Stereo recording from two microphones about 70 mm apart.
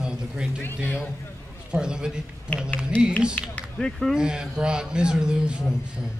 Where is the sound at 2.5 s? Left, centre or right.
Centre.